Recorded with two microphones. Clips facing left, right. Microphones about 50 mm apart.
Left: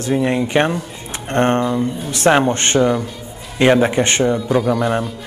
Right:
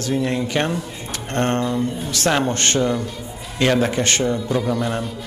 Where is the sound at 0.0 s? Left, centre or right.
Left.